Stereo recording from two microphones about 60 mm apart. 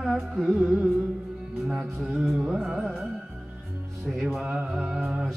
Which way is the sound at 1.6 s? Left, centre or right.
Centre.